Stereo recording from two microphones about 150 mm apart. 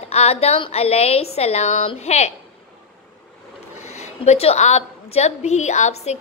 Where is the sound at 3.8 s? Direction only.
50° left (ahead or behind).